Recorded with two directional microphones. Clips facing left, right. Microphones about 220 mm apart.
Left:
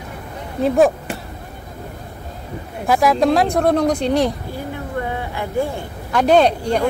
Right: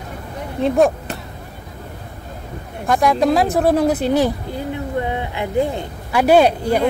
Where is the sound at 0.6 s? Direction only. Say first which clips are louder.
Left 1 dB; centre (ahead or behind).